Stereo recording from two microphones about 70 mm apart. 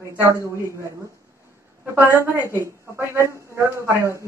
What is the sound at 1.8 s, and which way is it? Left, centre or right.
A man's voice, right.